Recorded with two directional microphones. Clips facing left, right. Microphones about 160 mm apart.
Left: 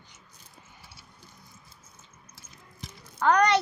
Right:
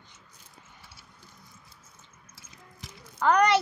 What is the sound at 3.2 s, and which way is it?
Speech, 5° right (ahead or behind).